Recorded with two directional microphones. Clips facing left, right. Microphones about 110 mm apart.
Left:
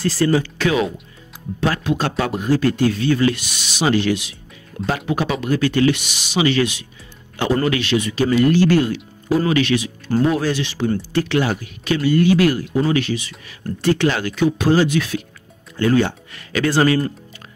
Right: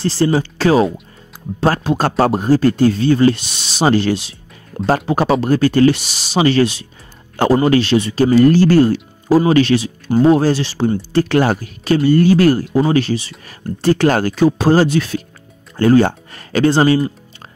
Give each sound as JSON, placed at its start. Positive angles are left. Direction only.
{"t": 0.0, "sound": "speech", "side_deg": -30}